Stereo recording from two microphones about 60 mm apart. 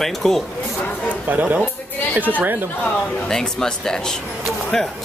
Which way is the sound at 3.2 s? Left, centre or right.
Centre.